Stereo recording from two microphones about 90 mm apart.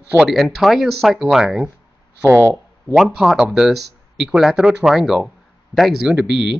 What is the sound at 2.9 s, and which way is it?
Speech, 5° right (ahead or behind).